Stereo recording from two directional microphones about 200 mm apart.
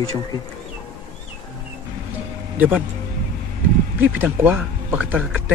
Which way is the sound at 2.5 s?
10° right (ahead or behind).